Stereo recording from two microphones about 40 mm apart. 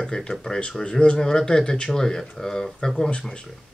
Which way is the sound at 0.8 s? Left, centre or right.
Left.